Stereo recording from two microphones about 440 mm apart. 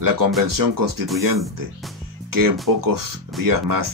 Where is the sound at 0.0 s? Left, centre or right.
Right.